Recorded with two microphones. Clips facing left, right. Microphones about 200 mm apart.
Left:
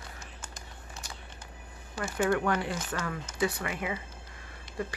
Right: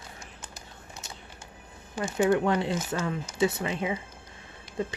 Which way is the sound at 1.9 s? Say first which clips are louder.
Right 4 dB; 20° right (ahead or behind).